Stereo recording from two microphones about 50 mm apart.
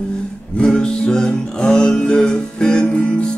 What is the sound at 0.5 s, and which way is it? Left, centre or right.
Music, centre.